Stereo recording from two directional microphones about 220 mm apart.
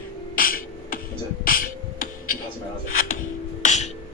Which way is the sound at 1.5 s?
40° left (ahead or behind).